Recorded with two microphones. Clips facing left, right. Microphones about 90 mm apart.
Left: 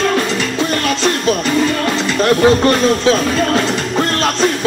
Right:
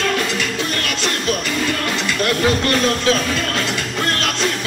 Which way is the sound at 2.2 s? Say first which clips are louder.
Left 8 dB; 30° left (ahead or behind).